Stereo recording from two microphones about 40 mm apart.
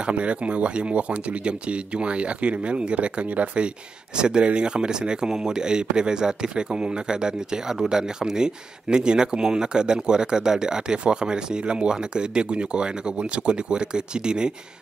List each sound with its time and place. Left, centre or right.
0.0 s speech: right